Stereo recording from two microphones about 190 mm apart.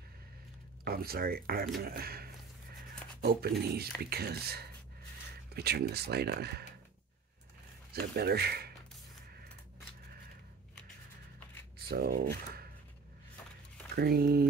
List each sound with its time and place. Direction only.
0.8 s speech: 50° right (ahead or behind)
7.9 s speech: 55° right (ahead or behind)
11.9 s speech: 55° right (ahead or behind)
13.9 s speech: 55° right (ahead or behind)